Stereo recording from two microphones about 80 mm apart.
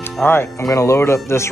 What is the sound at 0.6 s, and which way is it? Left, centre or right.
Speech, left.